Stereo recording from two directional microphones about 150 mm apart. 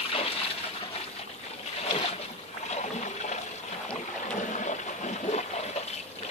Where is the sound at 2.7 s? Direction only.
50° left (ahead or behind).